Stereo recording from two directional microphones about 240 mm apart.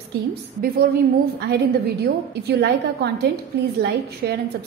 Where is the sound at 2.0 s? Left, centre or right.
Right.